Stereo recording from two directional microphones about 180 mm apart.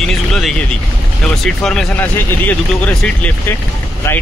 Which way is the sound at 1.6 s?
5° left (ahead or behind).